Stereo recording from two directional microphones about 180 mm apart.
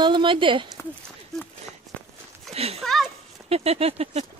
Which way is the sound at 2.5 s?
35° right (ahead or behind).